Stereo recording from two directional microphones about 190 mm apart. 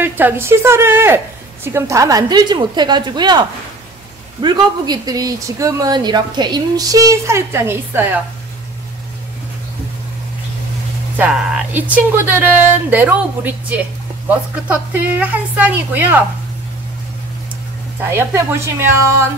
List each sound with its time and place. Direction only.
0.0 s a woman's voice: 10° right (ahead or behind)
11.1 s a woman's voice: 5° right (ahead or behind)
18.1 s a woman's voice: 15° right (ahead or behind)